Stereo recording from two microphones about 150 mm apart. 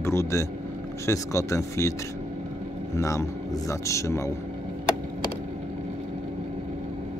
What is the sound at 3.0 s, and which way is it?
A man's voice, 20° left (ahead or behind).